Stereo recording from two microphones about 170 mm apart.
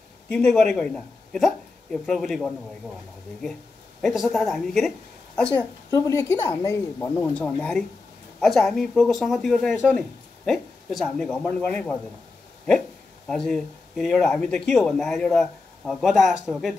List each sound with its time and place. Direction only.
0.3 s speech: 5° left (ahead or behind)
4.0 s speech: centre (ahead or behind)
5.9 s speech: 20° left (ahead or behind)
13.3 s speech: 5° left (ahead or behind)